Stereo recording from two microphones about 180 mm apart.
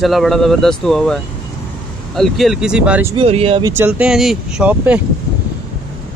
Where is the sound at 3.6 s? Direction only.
15° right (ahead or behind).